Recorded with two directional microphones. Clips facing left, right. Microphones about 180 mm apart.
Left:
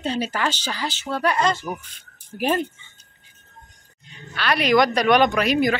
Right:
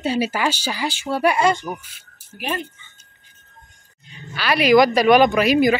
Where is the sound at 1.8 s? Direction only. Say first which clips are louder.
Even; 5° right (ahead or behind).